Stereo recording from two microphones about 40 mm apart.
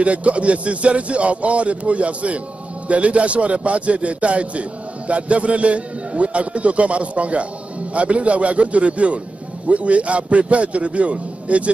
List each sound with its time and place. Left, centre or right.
0.0 s a man's voice: right